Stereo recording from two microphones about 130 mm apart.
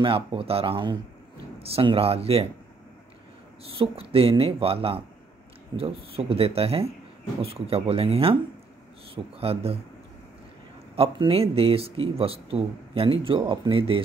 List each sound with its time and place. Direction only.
0.0 s speech: 45° right (ahead or behind)
3.7 s speech: 45° right (ahead or behind)
11.0 s speech: 45° right (ahead or behind)